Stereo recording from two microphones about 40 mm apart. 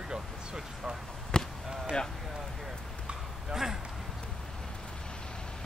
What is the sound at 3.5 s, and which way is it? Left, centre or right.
Speech, centre.